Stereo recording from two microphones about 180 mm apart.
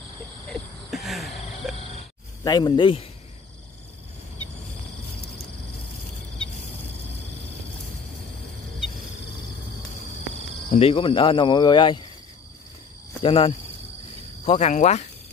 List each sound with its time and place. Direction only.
0.5 s a sound: centre (ahead or behind)
2.4 s speech: 25° left (ahead or behind)
10.8 s speech: 30° left (ahead or behind)
13.2 s speech: 30° left (ahead or behind)
14.4 s cricket: 35° left (ahead or behind)